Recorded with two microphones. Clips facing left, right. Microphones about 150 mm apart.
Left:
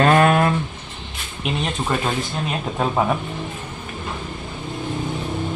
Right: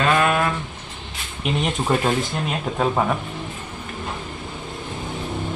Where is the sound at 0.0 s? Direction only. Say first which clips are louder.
Left 4 dB; 40° left (ahead or behind).